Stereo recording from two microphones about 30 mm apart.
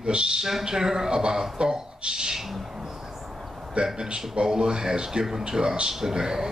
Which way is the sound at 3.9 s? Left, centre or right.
Right.